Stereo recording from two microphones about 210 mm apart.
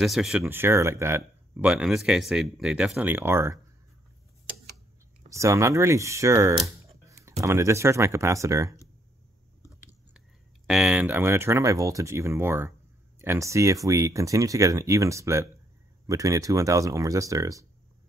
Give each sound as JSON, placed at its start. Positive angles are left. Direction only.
{"t": 0.0, "sound": "speech", "side_deg": 0}
{"t": 5.3, "sound": "speech", "side_deg": -15}
{"t": 10.7, "sound": "speech", "side_deg": -5}